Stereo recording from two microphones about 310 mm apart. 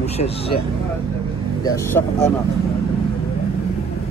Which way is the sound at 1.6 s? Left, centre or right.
Centre.